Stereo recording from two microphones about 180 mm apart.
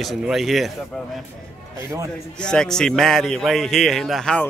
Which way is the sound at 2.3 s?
5° left (ahead or behind).